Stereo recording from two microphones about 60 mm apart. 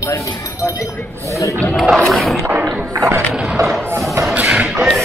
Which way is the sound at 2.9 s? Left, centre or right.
Right.